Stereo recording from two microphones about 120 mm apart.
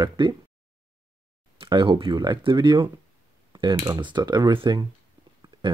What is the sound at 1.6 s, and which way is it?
Speech, 45° right (ahead or behind).